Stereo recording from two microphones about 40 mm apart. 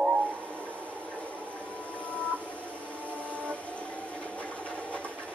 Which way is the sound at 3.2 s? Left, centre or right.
Left.